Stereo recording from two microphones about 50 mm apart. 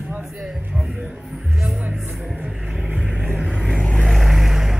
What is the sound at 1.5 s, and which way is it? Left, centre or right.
Music, centre.